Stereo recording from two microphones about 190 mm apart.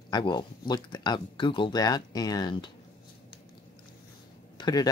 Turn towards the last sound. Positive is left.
turn(degrees=20)  # may be behind; listen again after turning